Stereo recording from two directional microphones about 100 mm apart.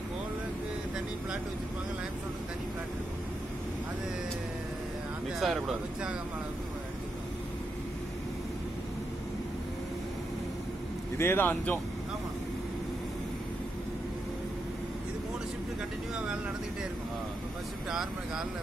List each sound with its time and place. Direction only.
5.4 s speech: 5° right (ahead or behind)
11.1 s speech: 25° left (ahead or behind)